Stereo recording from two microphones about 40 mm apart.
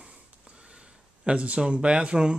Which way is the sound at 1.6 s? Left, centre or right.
Right.